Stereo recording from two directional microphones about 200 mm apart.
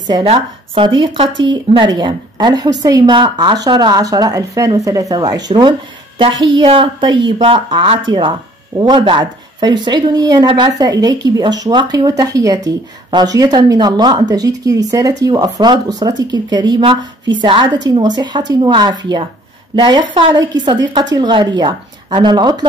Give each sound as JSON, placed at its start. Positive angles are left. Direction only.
{"t": 0.1, "sound": "speech", "side_deg": -25}